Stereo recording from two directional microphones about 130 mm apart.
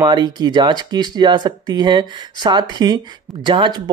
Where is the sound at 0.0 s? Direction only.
30° right (ahead or behind).